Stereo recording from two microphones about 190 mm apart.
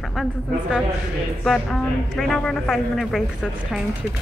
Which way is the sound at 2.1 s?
Centre (ahead or behind).